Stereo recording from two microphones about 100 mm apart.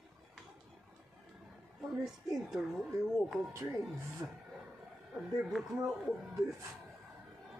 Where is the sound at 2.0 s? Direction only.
5° right (ahead or behind).